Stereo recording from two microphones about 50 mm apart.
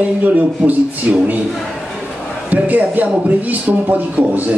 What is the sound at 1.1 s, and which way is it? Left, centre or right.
Speech, right.